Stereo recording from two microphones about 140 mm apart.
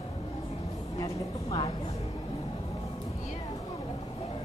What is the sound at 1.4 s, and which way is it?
Speech, 40° left (ahead or behind).